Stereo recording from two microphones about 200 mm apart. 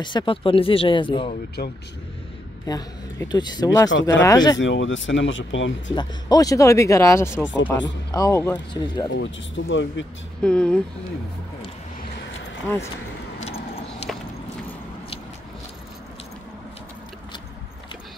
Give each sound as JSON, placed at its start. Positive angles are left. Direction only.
{"t": 0.0, "sound": "speech", "side_deg": 25}
{"t": 1.6, "sound": "speech", "side_deg": 50}
{"t": 2.6, "sound": "speech", "side_deg": 20}
{"t": 4.6, "sound": "speech", "side_deg": 70}
{"t": 5.9, "sound": "speech", "side_deg": 20}
{"t": 9.1, "sound": "speech", "side_deg": 70}
{"t": 10.4, "sound": "speech", "side_deg": 5}
{"t": 13.4, "sound": "vehicle", "side_deg": 30}